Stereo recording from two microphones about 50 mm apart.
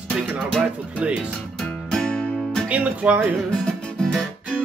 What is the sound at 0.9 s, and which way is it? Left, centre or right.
Speech, right.